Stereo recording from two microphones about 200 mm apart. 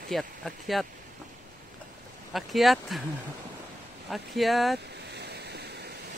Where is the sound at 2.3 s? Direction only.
Centre (ahead or behind).